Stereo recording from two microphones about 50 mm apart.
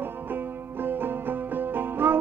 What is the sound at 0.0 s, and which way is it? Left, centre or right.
Music, right.